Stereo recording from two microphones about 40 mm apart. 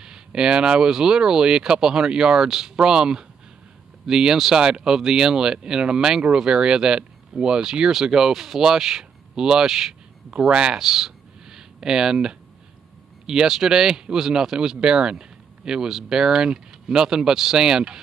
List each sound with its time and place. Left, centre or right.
0.0 s speech: centre